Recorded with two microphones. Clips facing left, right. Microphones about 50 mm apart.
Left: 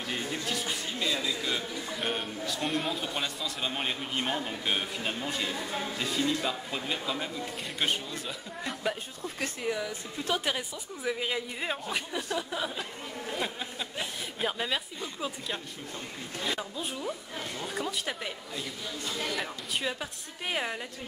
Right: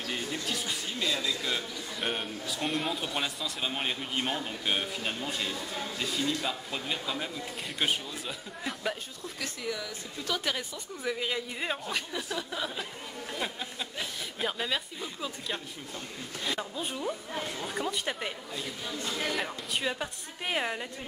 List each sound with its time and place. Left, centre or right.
0.1 s a sound: centre
0.9 s a man's voice: centre
5.5 s speech: centre
5.9 s a man's voice: centre
9.4 s speech: left
11.1 s a man's voice: centre
13.4 s a sound: centre
16.4 s a man's voice: centre